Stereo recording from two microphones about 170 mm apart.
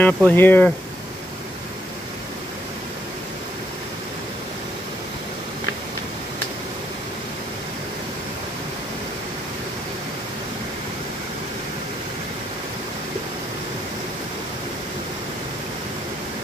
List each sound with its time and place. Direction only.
0.0 s speech: 10° left (ahead or behind)